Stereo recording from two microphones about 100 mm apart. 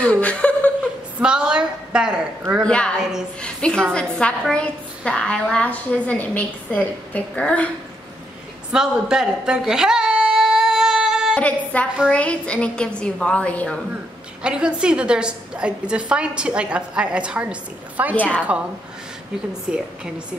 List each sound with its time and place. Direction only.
0.0 s speech: 15° left (ahead or behind)
1.2 s a sound: 10° right (ahead or behind)
2.6 s a woman's voice: 10° left (ahead or behind)
8.7 s a sound: 5° right (ahead or behind)
11.3 s a woman's voice: 15° left (ahead or behind)
14.4 s a woman's voice: 10° right (ahead or behind)
18.1 s a woman's voice: 15° left (ahead or behind)
19.7 s a woman's voice: 5° right (ahead or behind)